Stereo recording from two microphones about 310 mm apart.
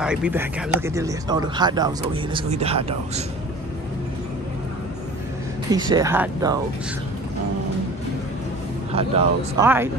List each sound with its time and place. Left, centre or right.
0.0 s speech: centre
5.7 s speech: centre
8.9 s speech: centre